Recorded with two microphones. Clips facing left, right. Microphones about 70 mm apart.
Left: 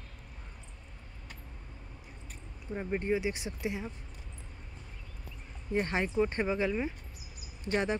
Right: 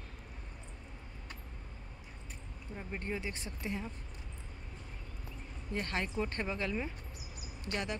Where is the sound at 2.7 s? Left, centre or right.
Left.